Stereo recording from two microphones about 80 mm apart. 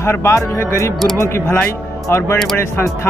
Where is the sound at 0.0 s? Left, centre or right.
Left.